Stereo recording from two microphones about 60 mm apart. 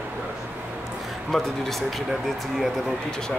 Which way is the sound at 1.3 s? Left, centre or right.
Centre.